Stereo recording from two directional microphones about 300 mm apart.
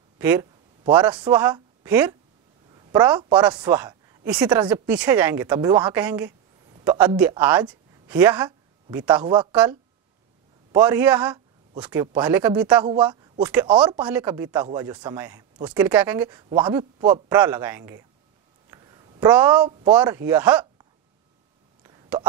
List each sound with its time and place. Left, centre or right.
0.2 s a woman's voice: centre
9.2 s speech: centre
10.7 s a man's voice: centre
18.7 s a sound: centre
19.6 s speech: centre
21.8 s a sound: centre